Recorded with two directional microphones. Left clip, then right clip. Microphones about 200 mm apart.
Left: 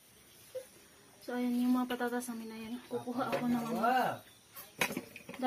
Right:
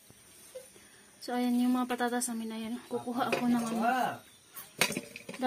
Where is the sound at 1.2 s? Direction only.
45° right (ahead or behind).